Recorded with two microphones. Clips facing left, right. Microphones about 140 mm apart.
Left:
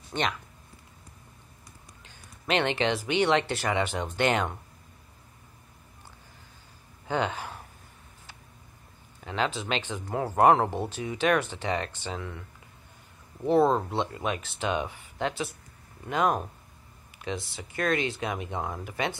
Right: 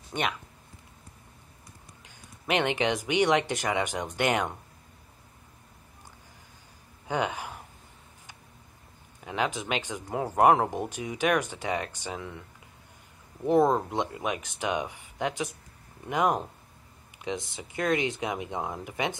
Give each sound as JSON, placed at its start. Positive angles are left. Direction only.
{"t": 0.1, "sound": "speech", "side_deg": -10}
{"t": 2.0, "sound": "speech", "side_deg": -15}
{"t": 7.1, "sound": "a sound", "side_deg": -10}
{"t": 9.2, "sound": "speech", "side_deg": -15}
{"t": 13.5, "sound": "speech", "side_deg": -15}